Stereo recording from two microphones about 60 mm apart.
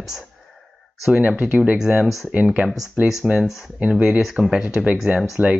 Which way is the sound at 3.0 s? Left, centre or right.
Right.